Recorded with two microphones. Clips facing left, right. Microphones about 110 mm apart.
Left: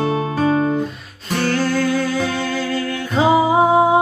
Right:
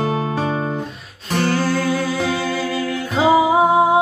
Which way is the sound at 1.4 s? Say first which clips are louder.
Left 1 dB; 5° right (ahead or behind).